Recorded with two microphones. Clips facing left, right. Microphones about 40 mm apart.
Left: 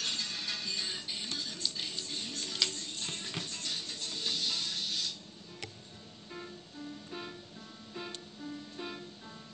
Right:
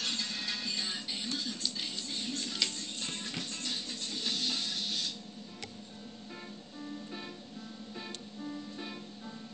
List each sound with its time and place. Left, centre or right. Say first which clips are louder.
0.0 s music: right 1 dB; right
8.7 s music: left 1 dB; centre